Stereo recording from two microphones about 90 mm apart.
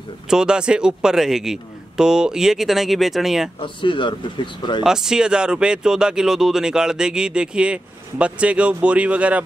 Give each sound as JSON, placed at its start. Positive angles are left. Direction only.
{"t": 0.3, "sound": "a man's voice", "side_deg": -10}
{"t": 3.5, "sound": "speech", "side_deg": 65}
{"t": 4.8, "sound": "speech", "side_deg": -5}